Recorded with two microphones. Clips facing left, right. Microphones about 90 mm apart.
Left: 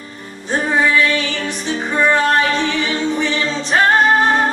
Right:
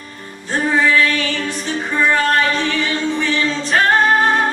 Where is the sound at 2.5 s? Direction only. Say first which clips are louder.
Left 1 dB; 20° left (ahead or behind).